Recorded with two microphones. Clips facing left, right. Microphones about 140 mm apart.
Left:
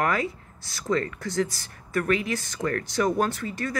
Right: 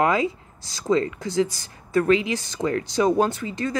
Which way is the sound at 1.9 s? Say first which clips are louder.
Right 5 dB; 25° right (ahead or behind).